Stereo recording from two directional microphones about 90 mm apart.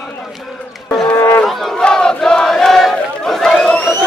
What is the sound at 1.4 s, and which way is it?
Battle cry, 10° left (ahead or behind).